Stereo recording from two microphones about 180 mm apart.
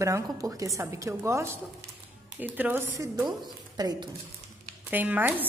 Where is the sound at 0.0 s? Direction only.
15° right (ahead or behind).